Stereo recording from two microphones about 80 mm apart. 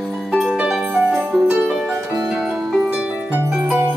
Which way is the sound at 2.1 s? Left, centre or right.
Centre.